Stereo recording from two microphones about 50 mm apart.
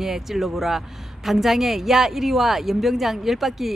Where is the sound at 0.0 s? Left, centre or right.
Centre.